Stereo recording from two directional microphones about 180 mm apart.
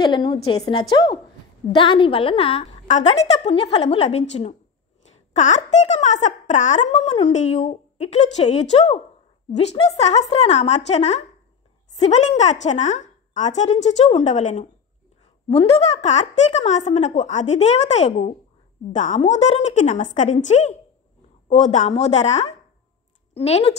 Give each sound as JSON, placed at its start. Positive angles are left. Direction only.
{"t": 0.0, "sound": "a woman's voice", "side_deg": 25}